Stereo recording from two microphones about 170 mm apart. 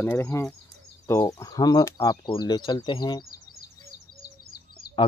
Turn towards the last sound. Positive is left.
turn(degrees=65)  # may be behind; listen again after turning